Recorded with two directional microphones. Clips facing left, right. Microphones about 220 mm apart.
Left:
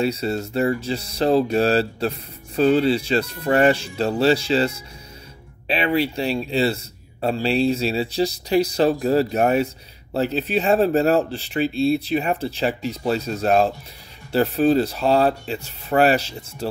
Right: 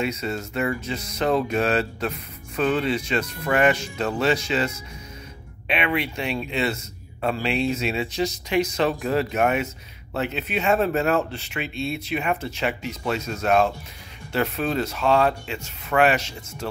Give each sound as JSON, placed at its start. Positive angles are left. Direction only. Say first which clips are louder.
{"t": 0.0, "sound": "speech", "louder": "left 4 dB", "side_deg": 35}